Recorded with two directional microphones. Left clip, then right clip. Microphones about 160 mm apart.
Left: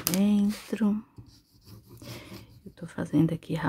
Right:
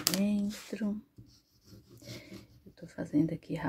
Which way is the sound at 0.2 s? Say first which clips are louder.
Left 7 dB; 30° left (ahead or behind).